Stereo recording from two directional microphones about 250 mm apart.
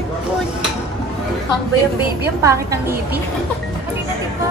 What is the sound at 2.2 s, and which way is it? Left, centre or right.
Speech, centre.